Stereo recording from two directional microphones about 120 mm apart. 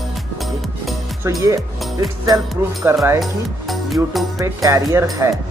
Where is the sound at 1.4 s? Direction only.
30° right (ahead or behind).